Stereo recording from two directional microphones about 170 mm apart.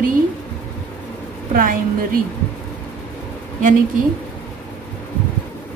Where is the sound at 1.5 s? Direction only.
55° right (ahead or behind).